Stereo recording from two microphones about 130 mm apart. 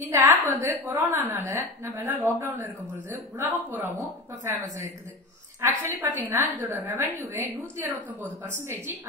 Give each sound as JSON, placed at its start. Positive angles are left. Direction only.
{"t": 0.1, "sound": "a woman's voice", "side_deg": -20}
{"t": 5.6, "sound": "a woman's voice", "side_deg": -20}